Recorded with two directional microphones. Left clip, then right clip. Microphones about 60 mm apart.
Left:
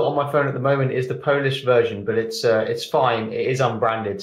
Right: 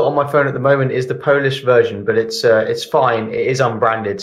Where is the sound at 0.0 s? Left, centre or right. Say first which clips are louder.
Right 5 dB; centre.